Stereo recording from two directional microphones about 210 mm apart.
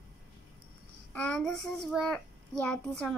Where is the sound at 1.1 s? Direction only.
5° left (ahead or behind).